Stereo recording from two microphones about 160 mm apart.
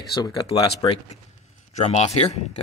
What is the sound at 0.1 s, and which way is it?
Speech, 30° left (ahead or behind).